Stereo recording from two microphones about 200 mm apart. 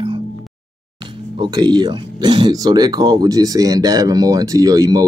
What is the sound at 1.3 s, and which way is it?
Speech, 20° right (ahead or behind).